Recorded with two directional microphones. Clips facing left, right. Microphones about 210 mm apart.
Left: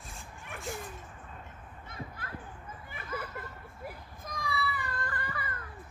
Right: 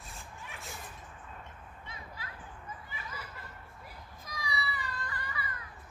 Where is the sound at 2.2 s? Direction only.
55° left (ahead or behind).